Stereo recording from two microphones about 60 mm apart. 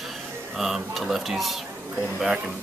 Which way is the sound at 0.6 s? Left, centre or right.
Centre.